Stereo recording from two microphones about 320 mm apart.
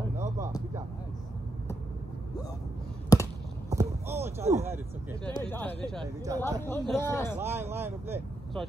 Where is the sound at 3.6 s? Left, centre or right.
Centre.